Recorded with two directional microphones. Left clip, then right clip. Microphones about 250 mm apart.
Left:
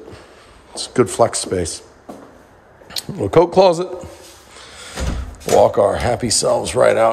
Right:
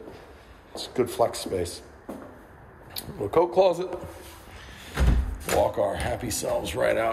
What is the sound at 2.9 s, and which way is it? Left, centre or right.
Speech, left.